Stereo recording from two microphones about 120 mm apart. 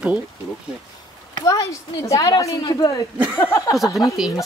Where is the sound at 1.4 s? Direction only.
25° left (ahead or behind).